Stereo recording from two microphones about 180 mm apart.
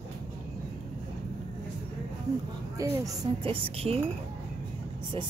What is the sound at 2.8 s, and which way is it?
Speech, 20° right (ahead or behind).